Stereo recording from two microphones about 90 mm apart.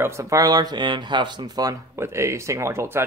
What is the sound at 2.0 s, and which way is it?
Speech, 30° right (ahead or behind).